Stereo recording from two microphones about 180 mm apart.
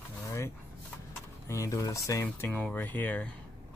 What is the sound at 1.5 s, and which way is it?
Speech, 15° left (ahead or behind).